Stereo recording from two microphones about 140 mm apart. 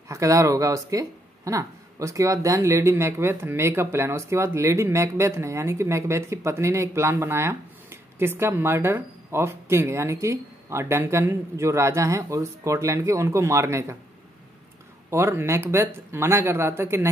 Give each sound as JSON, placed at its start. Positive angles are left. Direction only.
{"t": 0.1, "sound": "speech", "side_deg": -20}
{"t": 15.0, "sound": "speech", "side_deg": -20}